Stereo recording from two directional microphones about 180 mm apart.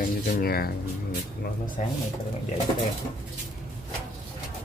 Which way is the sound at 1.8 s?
40° left (ahead or behind).